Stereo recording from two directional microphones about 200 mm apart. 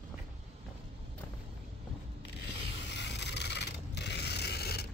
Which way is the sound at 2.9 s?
60° left (ahead or behind).